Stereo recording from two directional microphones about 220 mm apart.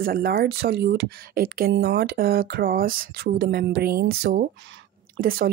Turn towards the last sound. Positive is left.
turn(degrees=-40)  # may be behind; listen again after turning